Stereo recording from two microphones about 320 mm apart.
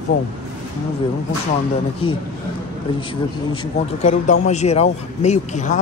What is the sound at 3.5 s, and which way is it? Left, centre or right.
Speech, centre.